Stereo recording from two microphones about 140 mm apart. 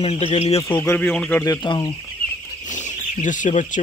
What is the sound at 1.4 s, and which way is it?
Speech, 25° left (ahead or behind).